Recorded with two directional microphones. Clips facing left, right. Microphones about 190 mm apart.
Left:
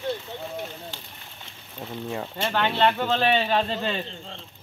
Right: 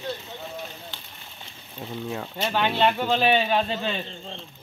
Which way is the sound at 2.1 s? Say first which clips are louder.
Left 1 dB; centre (ahead or behind).